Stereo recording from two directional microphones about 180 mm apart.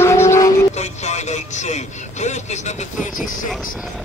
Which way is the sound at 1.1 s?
40° left (ahead or behind).